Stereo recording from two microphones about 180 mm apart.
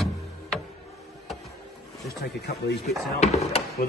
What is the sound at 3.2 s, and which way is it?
Speech, 35° left (ahead or behind).